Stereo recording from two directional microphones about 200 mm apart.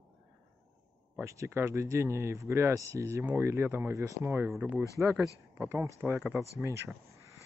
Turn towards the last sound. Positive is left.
turn(degrees=-15)  # may be behind; listen again after turning